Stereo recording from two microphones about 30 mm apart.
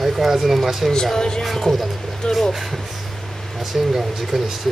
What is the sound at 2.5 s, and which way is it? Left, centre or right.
Speech, centre.